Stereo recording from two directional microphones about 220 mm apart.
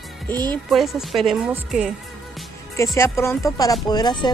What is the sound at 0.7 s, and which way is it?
Speech, centre (ahead or behind).